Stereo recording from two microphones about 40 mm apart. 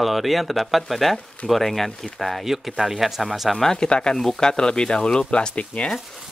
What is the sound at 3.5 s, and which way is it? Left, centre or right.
Speech, centre.